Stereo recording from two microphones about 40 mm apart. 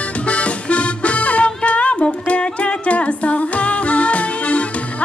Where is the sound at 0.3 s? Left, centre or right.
Left.